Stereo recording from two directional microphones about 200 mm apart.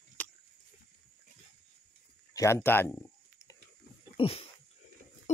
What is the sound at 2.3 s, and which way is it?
Speech, 15° left (ahead or behind).